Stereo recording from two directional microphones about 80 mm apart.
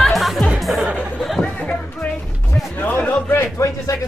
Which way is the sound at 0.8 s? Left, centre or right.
Centre.